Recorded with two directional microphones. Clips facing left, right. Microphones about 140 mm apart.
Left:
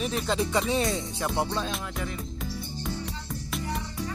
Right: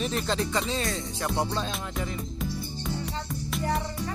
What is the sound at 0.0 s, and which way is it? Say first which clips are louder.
Speech: even; 5° left (ahead or behind).